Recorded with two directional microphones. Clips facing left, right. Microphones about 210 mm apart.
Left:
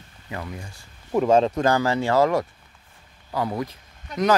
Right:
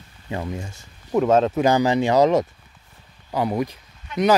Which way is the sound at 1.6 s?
15° right (ahead or behind).